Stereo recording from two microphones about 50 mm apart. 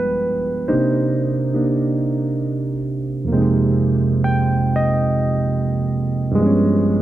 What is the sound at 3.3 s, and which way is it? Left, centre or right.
Music, centre.